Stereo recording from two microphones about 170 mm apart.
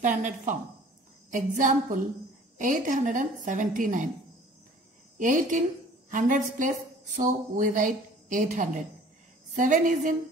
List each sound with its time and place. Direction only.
0.0 s a woman's voice: 45° right (ahead or behind)
5.2 s a woman's voice: 50° right (ahead or behind)